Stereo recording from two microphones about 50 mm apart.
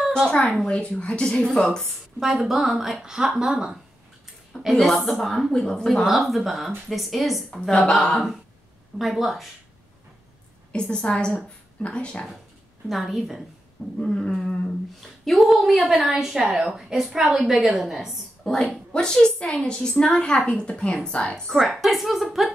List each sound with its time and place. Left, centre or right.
0.4 s a woman's voice: centre
0.7 s a woman's voice: centre
2.1 s a woman's voice: centre
4.7 s a woman's voice: centre
6.0 s a woman's voice: centre
7.8 s a woman's voice: centre
8.9 s a woman's voice: centre
10.7 s a woman's voice: centre
12.8 s a woman's voice: centre
13.9 s a woman's voice: centre
18.4 s a woman's voice: centre
21.5 s a woman's voice: centre